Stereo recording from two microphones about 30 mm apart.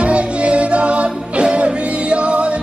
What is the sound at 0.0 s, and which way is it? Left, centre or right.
Music, right.